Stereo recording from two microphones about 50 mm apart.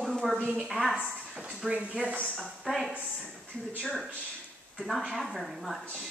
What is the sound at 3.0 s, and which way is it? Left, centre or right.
Speech, right.